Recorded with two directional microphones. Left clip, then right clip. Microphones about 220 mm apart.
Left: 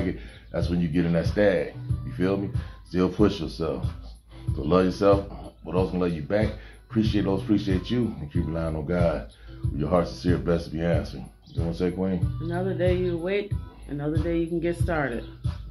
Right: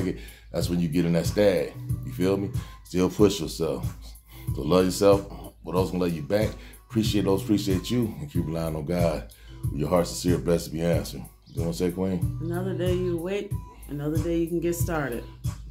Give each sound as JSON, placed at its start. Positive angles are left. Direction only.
{"t": 0.5, "sound": "speech", "side_deg": -20}
{"t": 12.4, "sound": "speech", "side_deg": 0}